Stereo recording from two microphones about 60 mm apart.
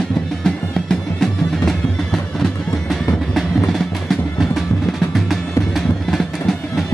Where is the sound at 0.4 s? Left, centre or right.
Centre.